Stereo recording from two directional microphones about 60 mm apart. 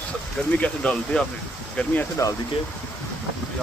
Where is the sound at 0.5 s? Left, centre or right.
Left.